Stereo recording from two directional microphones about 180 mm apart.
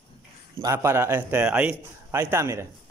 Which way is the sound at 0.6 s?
15° right (ahead or behind).